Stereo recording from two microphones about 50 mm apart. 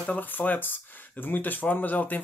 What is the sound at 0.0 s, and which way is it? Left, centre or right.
Speech, left.